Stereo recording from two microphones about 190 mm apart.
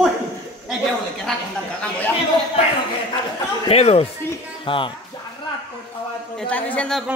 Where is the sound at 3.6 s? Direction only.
30° left (ahead or behind).